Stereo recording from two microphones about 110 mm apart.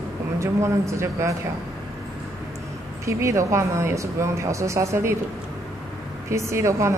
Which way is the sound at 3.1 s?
30° right (ahead or behind).